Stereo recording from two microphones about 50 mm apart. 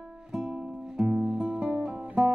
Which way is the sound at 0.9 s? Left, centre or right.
Centre.